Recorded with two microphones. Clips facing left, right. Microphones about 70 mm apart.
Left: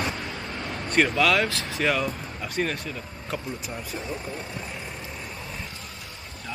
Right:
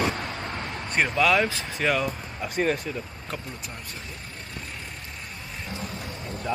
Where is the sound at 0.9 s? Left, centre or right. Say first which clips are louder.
Left 1 dB; centre.